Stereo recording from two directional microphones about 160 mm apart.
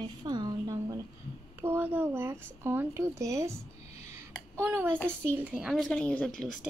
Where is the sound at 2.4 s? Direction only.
15° right (ahead or behind).